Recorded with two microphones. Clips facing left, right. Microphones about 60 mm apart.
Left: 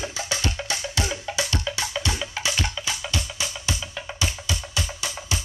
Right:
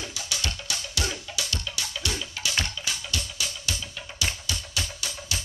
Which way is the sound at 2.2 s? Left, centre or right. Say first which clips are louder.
Left 5 dB; left.